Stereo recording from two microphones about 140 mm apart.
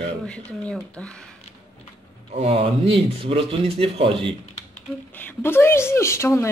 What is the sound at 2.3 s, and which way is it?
Speech, 45° right (ahead or behind).